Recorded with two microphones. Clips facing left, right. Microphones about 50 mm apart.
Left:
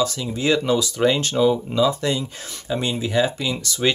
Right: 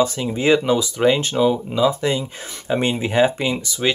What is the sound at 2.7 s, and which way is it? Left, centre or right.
Speech, right.